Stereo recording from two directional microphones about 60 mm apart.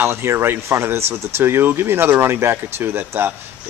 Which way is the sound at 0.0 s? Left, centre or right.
Right.